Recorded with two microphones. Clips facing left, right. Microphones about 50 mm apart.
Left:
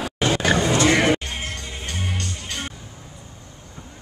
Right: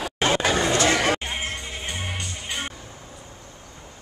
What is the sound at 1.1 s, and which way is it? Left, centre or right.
Music, centre.